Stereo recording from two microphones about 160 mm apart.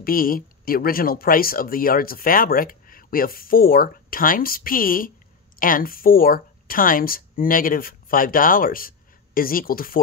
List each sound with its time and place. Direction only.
0.0 s speech: 65° left (ahead or behind)